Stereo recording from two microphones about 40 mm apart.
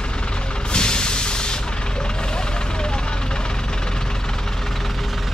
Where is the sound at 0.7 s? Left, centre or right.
Left.